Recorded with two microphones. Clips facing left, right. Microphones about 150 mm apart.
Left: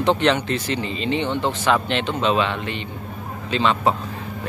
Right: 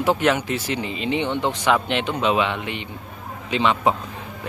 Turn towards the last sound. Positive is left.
turn(degrees=-15)  # may be behind; listen again after turning